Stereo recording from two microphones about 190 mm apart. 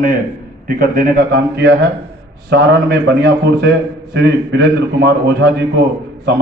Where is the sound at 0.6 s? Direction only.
50° right (ahead or behind).